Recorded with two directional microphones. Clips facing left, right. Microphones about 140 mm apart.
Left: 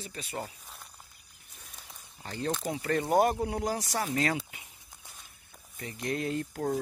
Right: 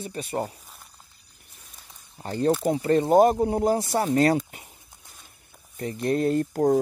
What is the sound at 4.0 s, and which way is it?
Speech, 40° right (ahead or behind).